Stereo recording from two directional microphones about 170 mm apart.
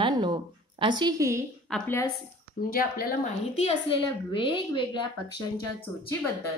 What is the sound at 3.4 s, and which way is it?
A woman's voice, 35° left (ahead or behind).